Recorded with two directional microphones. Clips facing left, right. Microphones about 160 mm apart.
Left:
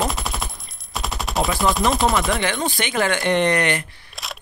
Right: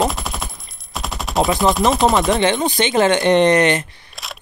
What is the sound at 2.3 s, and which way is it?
Speech, 20° right (ahead or behind).